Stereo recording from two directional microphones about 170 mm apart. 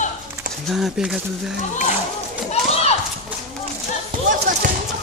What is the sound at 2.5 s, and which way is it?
Children playing, 40° left (ahead or behind).